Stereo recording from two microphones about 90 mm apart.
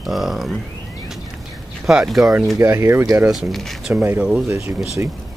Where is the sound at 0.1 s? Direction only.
5° right (ahead or behind).